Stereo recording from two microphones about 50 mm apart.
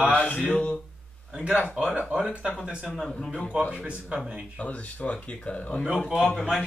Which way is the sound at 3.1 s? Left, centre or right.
Centre.